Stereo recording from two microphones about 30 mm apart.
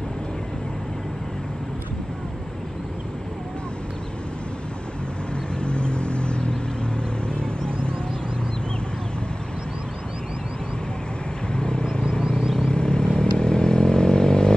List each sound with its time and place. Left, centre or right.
5.6 s vehicle: left
11.5 s vehicle: left